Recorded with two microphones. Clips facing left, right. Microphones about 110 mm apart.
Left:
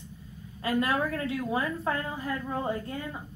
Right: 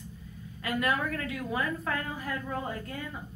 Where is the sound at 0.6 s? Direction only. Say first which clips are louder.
Left 3 dB; 30° left (ahead or behind).